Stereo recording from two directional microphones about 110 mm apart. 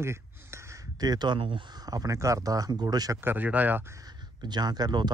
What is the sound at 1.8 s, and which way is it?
Speech, 35° right (ahead or behind).